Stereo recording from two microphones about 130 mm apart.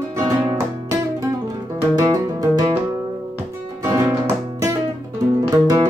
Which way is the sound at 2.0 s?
30° right (ahead or behind).